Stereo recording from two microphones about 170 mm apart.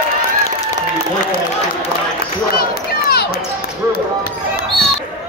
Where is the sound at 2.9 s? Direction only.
65° left (ahead or behind).